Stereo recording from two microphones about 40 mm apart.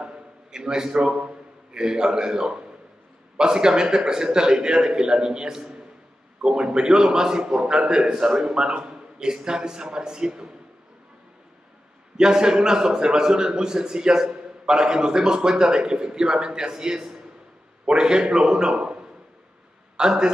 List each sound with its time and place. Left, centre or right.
0.0 s a man's voice: right
12.2 s a man's voice: centre